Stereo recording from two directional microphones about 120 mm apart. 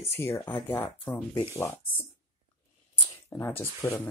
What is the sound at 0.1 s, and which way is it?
Speech, 20° left (ahead or behind).